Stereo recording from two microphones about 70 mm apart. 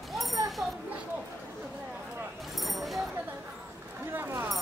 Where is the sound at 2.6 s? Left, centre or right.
Centre.